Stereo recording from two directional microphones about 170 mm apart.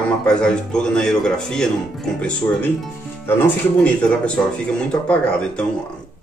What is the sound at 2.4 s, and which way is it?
A man's voice, 15° left (ahead or behind).